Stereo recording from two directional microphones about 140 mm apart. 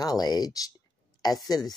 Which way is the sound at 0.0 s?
30° left (ahead or behind).